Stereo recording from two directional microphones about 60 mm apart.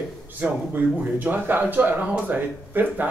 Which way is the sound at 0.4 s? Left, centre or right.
Right.